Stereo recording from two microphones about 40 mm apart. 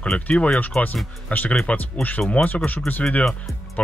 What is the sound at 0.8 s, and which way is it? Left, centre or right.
Speech, left.